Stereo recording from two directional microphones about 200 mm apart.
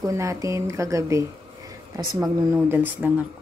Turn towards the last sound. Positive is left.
turn(degrees=-10)  # may be behind; listen again after turning